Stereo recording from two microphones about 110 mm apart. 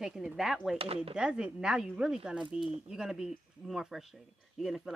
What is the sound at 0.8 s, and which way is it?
Speech, 60° right (ahead or behind).